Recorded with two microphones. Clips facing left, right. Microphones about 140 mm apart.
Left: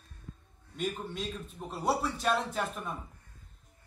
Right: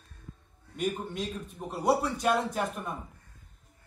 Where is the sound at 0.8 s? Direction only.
15° right (ahead or behind).